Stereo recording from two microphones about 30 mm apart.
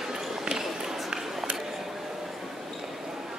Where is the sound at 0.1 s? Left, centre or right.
Right.